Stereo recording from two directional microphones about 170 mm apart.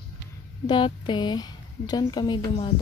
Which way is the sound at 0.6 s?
30° left (ahead or behind).